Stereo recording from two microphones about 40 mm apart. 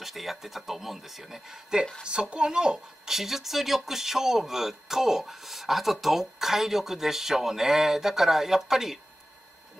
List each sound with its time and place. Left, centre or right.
0.0 s speech: centre
2.0 s speech: right
3.1 s speech: centre